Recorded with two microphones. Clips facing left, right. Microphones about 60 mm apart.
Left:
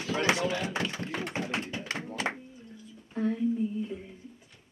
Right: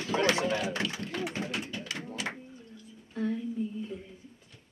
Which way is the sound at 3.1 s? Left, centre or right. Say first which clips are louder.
Left 4 dB; centre.